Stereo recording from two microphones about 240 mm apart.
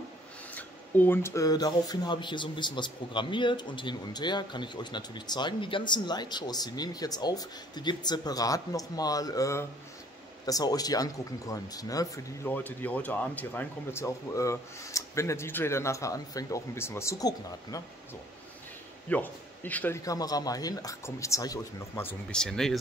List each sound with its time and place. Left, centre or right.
0.6 s speech: centre
19.0 s speech: centre